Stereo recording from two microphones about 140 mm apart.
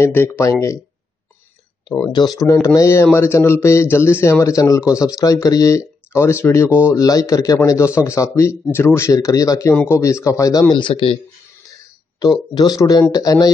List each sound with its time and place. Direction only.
0.0 s a man's voice: 15° left (ahead or behind)
2.1 s a man's voice: 25° left (ahead or behind)
12.2 s a man's voice: 30° left (ahead or behind)